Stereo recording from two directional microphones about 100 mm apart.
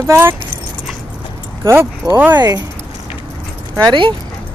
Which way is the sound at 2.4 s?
40° right (ahead or behind).